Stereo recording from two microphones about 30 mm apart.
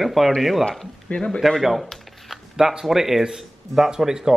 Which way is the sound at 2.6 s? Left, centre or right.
Centre.